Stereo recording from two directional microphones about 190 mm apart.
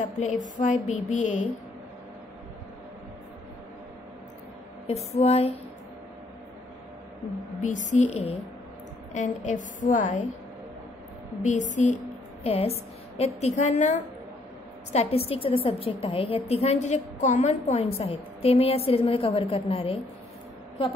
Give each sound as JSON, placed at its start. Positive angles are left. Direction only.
{"t": 0.0, "sound": "a woman's voice", "side_deg": 40}
{"t": 4.8, "sound": "a woman's voice", "side_deg": 35}
{"t": 7.6, "sound": "a woman's voice", "side_deg": 40}
{"t": 11.4, "sound": "a woman's voice", "side_deg": 40}